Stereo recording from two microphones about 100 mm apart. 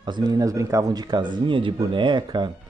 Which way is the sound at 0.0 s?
45° right (ahead or behind).